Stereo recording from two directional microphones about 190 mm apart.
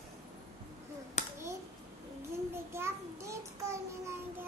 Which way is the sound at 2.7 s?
15° right (ahead or behind).